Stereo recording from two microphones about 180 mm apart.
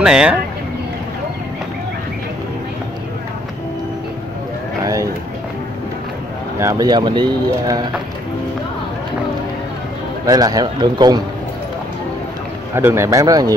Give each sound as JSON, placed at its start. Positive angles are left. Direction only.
{"t": 0.0, "sound": "speech", "side_deg": -5}
{"t": 4.8, "sound": "vehicle", "side_deg": -20}
{"t": 6.6, "sound": "speech", "side_deg": -20}
{"t": 10.2, "sound": "speech", "side_deg": -20}
{"t": 12.7, "sound": "speech", "side_deg": -15}